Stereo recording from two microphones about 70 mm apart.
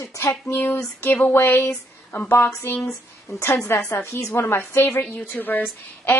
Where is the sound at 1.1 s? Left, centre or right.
Left.